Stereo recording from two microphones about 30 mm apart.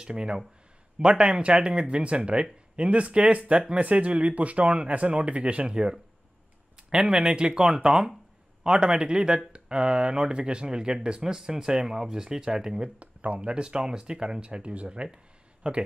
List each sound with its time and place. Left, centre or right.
0.0 s speech: right
5.1 s speech: right
5.7 s speech: right
13.0 s a sound: right
13.4 s speech: right
14.4 s speech: right